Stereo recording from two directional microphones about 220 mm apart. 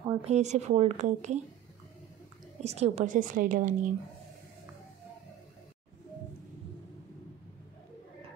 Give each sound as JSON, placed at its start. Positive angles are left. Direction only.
{"t": 0.2, "sound": "a woman's voice", "side_deg": -30}
{"t": 2.6, "sound": "a woman's voice", "side_deg": -30}